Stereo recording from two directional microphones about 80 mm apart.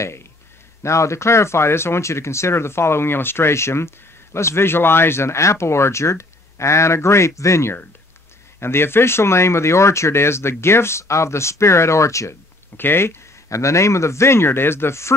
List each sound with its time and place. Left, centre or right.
0.8 s speech: left
12.7 s speech: left